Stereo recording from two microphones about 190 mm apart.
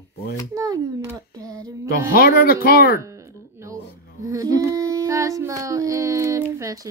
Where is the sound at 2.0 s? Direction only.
50° left (ahead or behind).